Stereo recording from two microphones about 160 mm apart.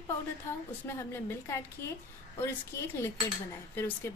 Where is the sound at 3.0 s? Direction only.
15° left (ahead or behind).